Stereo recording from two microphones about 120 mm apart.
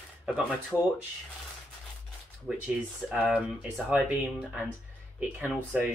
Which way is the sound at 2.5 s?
10° right (ahead or behind).